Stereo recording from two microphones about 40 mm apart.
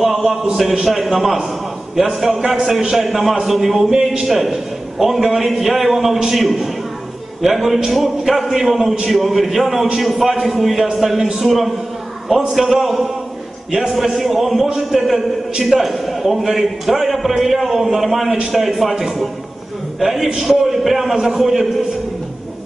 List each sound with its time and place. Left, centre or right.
0.0 s a sound: centre
0.8 s a man's voice: centre
3.9 s a man's voice: centre
4.3 s a man's voice: centre